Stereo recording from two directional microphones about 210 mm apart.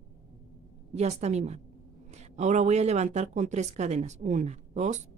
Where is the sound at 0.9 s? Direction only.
30° right (ahead or behind).